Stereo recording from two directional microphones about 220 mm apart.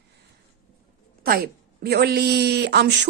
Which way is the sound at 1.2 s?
45° right (ahead or behind).